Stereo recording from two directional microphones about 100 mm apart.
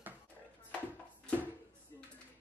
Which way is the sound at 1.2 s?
15° left (ahead or behind).